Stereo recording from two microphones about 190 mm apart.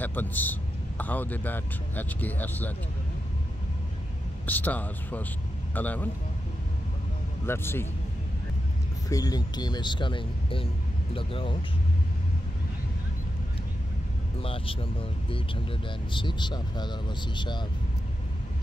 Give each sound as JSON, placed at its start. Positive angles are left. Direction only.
{"t": 0.0, "sound": "a man's voice", "side_deg": 10}
{"t": 4.5, "sound": "a man's voice", "side_deg": 10}
{"t": 7.4, "sound": "a man's voice", "side_deg": 10}
{"t": 9.1, "sound": "speech", "side_deg": 20}
{"t": 14.4, "sound": "speech", "side_deg": 30}